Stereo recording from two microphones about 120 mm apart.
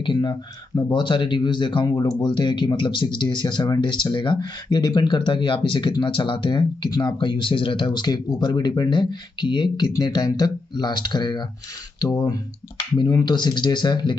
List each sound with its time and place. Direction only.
0.0 s speech: 40° left (ahead or behind)